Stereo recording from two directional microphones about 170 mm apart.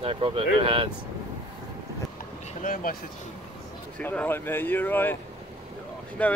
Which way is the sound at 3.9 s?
10° left (ahead or behind).